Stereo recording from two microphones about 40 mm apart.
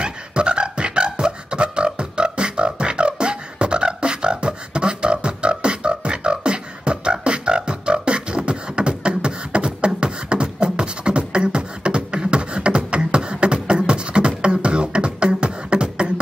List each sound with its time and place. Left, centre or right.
0.0 s beatboxing: right